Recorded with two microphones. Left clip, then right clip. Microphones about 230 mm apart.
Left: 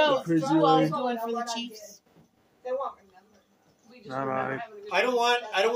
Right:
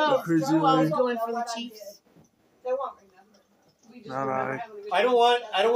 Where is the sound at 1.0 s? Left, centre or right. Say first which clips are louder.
Right 2 dB; left.